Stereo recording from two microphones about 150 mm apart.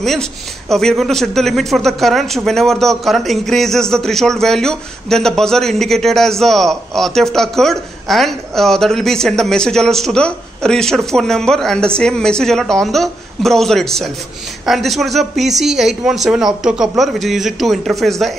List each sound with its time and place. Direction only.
0.0 s a man's voice: centre (ahead or behind)